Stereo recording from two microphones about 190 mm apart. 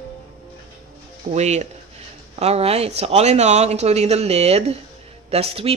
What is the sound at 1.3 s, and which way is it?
Speech, 35° right (ahead or behind).